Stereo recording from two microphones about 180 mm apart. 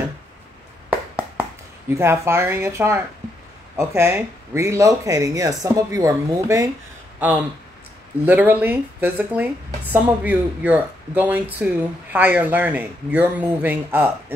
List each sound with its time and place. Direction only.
0.8 s a sound: 10° right (ahead or behind)
1.9 s speech: 15° right (ahead or behind)
8.3 s speech: 10° right (ahead or behind)